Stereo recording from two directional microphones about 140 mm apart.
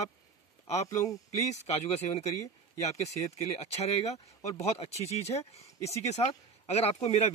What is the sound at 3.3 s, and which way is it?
Speech, 50° left (ahead or behind).